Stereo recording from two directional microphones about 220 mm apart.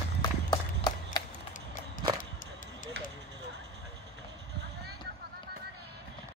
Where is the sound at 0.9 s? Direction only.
20° left (ahead or behind).